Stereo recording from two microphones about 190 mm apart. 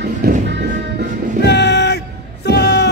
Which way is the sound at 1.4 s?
65° left (ahead or behind).